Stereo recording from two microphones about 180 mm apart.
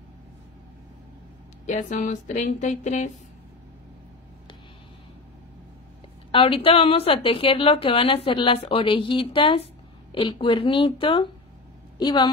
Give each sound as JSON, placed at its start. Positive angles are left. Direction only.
{"t": 1.7, "sound": "speech", "side_deg": 45}
{"t": 6.3, "sound": "a woman's voice", "side_deg": 30}